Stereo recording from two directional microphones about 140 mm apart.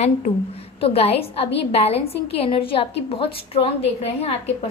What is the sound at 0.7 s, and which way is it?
A woman's voice, 45° left (ahead or behind).